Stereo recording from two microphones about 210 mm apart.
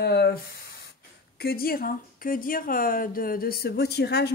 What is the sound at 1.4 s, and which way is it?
A woman's voice, 45° left (ahead or behind).